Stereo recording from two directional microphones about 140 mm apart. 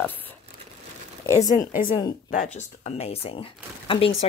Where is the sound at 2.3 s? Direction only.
65° left (ahead or behind).